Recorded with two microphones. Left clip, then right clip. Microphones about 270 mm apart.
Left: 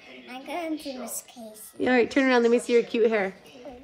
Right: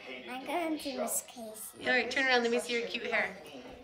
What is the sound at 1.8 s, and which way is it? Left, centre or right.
Speech, centre.